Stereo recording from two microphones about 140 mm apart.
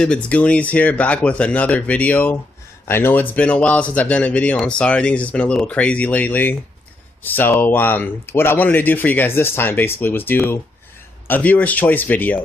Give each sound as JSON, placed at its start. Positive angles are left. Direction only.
{"t": 0.0, "sound": "speech", "side_deg": 10}